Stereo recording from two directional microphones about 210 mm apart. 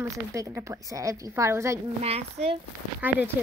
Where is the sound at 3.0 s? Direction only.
10° right (ahead or behind).